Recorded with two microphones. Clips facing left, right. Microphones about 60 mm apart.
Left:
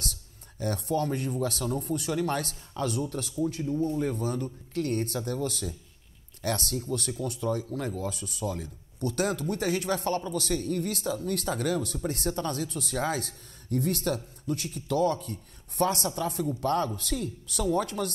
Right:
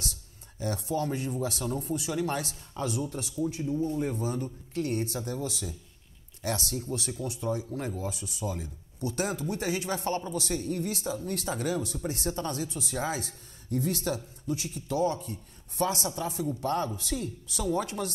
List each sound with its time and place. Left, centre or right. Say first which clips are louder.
0.0 s speech: left 1 dB; left